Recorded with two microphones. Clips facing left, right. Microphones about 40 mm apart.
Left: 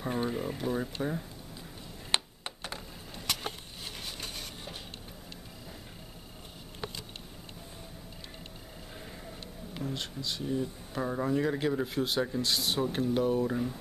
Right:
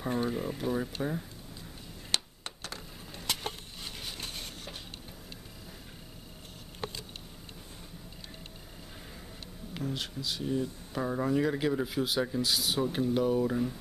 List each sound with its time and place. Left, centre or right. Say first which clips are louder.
0.0 s speech: right 1 dB; centre
2.0 s a sound: left 2 dB; left
4.0 s wood: even; centre
9.8 s speech: right 1 dB; centre